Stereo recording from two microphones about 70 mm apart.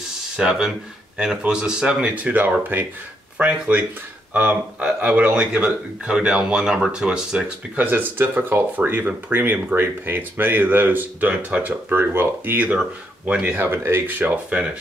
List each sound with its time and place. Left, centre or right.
0.4 s speech: centre
7.7 s speech: right
13.3 s speech: centre
13.6 s speech: right; by 14.7 s centre